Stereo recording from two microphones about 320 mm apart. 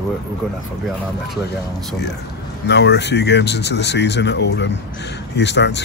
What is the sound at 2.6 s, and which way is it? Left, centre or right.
Speech, left.